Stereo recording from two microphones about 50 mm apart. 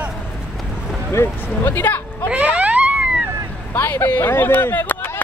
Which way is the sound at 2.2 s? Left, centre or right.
Right.